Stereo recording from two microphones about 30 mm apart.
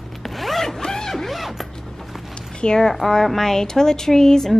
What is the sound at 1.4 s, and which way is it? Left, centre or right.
Zipper, centre.